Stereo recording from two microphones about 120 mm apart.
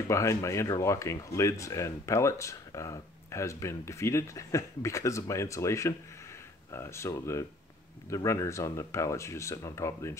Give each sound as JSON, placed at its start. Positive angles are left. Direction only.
{"t": 0.1, "sound": "speech", "side_deg": 25}